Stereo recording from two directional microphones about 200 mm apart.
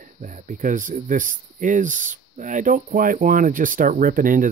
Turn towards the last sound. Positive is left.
turn(degrees=-45)  # may be behind; listen again after turning